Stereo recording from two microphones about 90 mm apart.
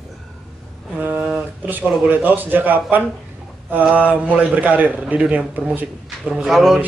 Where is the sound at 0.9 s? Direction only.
20° right (ahead or behind).